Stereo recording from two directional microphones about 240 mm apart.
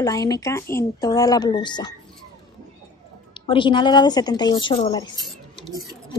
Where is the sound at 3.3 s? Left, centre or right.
Left.